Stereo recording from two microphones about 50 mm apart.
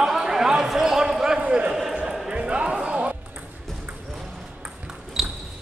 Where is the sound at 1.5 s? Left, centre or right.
Centre.